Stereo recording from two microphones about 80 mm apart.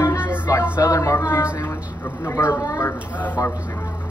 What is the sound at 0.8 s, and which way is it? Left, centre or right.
Speech, left.